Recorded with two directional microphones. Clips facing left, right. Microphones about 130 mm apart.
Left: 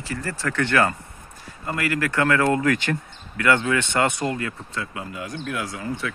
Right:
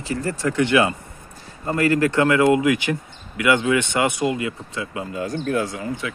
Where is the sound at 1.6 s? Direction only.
30° right (ahead or behind).